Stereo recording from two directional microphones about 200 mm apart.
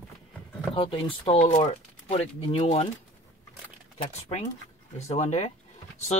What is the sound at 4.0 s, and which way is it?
A man's voice, 30° left (ahead or behind).